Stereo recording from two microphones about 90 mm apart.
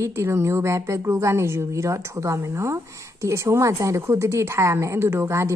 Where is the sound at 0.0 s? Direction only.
30° right (ahead or behind).